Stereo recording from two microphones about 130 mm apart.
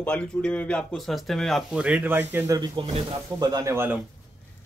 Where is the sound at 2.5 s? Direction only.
35° right (ahead or behind).